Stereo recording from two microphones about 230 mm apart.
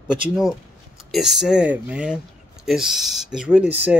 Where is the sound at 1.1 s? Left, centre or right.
Centre.